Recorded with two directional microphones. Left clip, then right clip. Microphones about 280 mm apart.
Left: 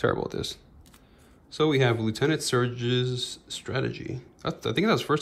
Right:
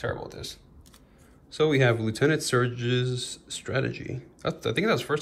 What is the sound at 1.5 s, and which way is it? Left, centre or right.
Speech, centre.